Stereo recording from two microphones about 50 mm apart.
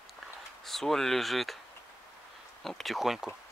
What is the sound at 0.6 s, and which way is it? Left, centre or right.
Speech, centre.